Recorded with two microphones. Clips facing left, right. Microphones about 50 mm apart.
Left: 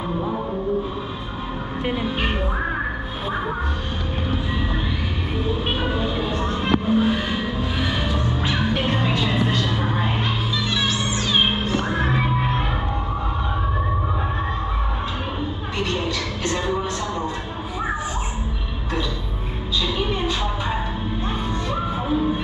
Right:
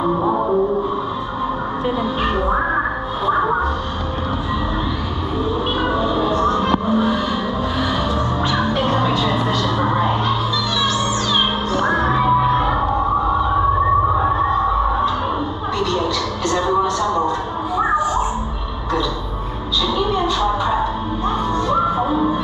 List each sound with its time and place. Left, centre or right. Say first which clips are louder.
5.4 s music: right 4 dB; left
11.9 s music: right 7 dB; left
16.4 s music: right 7 dB; left
20.0 s a sound: right 6 dB; left